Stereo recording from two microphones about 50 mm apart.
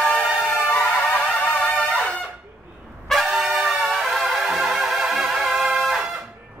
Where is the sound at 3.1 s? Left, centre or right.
Centre.